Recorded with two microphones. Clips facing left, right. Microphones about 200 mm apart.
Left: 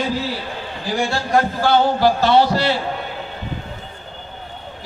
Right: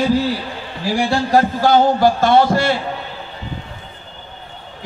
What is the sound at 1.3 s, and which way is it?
A man's voice, 40° right (ahead or behind).